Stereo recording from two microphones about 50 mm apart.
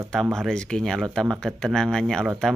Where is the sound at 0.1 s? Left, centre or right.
Centre.